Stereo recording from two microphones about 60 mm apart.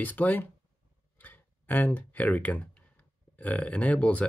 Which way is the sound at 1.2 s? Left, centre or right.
Left.